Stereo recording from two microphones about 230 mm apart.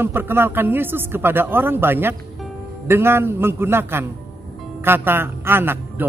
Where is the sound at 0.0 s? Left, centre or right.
Centre.